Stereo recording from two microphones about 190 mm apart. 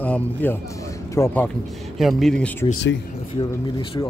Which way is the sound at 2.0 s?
Centre (ahead or behind).